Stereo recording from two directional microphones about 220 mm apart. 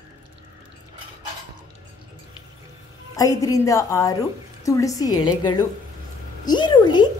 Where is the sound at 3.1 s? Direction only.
15° left (ahead or behind).